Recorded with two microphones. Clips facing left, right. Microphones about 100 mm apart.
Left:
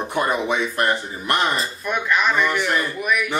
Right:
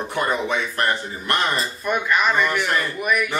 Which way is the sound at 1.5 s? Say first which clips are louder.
Right 1 dB; centre (ahead or behind).